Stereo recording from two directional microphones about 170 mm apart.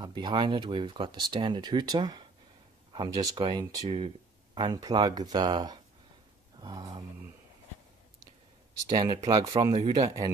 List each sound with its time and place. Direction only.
0.0 s speech: 25° right (ahead or behind)
6.6 s a sound: 25° right (ahead or behind)
8.8 s speech: 25° right (ahead or behind)